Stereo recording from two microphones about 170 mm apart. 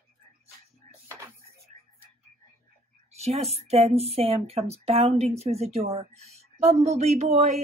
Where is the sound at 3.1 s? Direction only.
40° right (ahead or behind).